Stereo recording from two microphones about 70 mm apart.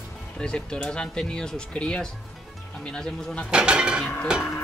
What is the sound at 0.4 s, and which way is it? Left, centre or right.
Speech, centre.